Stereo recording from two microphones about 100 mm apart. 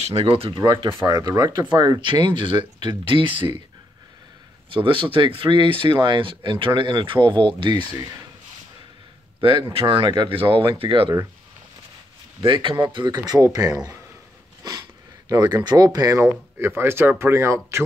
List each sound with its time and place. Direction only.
0.1 s speech: 70° right (ahead or behind)
0.6 s speech: 55° right (ahead or behind)
1.0 s speech: 40° right (ahead or behind); by 3.5 s 55° right (ahead or behind)
4.6 s speech: 55° right (ahead or behind)
9.4 s speech: 60° right (ahead or behind)
12.4 s speech: 60° right (ahead or behind); by 13.7 s 35° right (ahead or behind)
15.2 s speech: 40° right (ahead or behind)
16.2 s speech: 25° right (ahead or behind)